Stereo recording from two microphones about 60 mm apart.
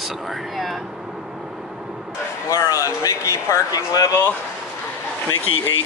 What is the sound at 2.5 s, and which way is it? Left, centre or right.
Speech, left.